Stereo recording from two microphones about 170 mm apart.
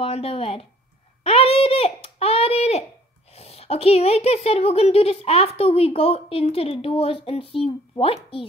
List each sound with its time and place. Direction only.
0.0 s a woman's voice: 35° left (ahead or behind)
1.2 s a sound: 35° left (ahead or behind)
3.3 s a woman's voice: 35° left (ahead or behind)